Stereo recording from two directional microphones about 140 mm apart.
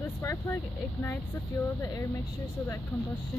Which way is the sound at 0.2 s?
15° left (ahead or behind).